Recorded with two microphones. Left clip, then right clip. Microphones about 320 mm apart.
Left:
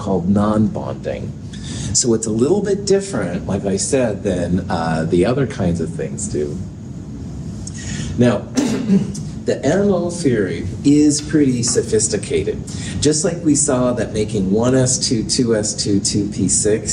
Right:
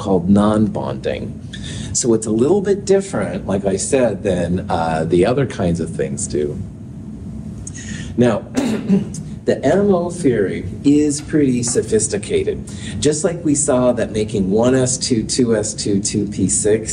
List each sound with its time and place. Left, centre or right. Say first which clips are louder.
0.0 s a man's voice: right 3 dB; right
8.2 s a man's voice: even; right